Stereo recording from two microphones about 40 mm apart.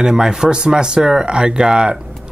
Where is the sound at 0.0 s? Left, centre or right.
Centre.